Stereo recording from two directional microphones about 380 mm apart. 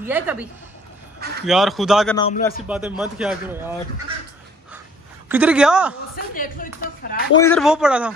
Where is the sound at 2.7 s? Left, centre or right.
Centre.